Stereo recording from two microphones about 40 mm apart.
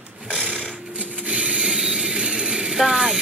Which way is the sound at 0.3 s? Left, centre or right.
Left.